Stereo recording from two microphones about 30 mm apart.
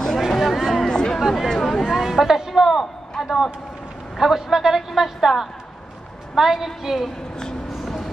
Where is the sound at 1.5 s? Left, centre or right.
Centre.